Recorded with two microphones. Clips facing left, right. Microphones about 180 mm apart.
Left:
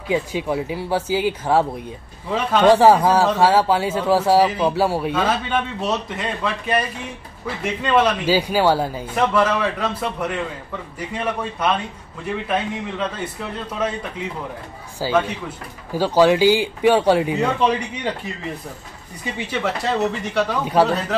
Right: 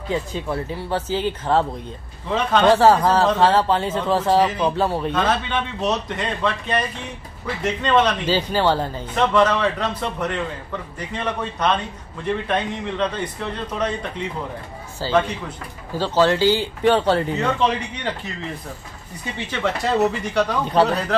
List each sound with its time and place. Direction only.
0.1 s a man's voice: 10° left (ahead or behind)
20.0 s speech: centre (ahead or behind)